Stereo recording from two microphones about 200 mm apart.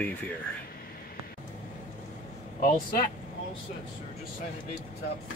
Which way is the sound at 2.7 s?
45° left (ahead or behind).